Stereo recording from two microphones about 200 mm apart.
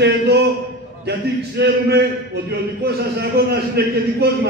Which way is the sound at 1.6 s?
55° right (ahead or behind).